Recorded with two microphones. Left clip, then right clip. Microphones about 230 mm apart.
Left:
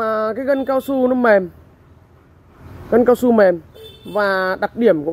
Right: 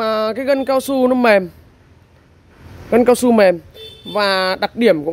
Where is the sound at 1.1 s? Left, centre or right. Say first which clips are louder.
Right 1 dB; right.